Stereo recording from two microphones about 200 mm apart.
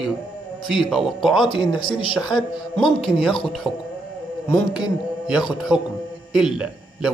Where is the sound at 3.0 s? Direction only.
Centre (ahead or behind).